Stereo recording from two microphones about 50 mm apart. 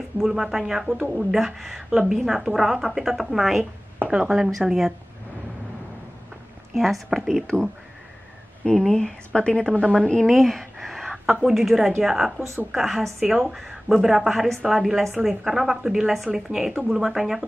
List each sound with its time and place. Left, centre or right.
0.2 s a woman's voice: centre
6.7 s a woman's voice: centre
8.6 s speech: centre
10.2 s a sound: centre
11.4 s a woman's voice: centre